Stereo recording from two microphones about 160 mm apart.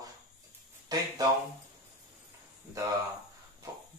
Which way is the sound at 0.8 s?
25° right (ahead or behind).